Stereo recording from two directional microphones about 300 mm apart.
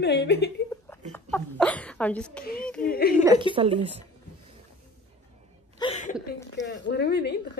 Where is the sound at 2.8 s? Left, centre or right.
Left.